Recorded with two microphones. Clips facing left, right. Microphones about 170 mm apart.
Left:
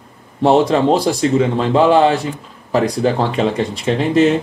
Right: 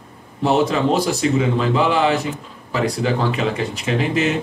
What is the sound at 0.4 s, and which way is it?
Speech, 35° left (ahead or behind).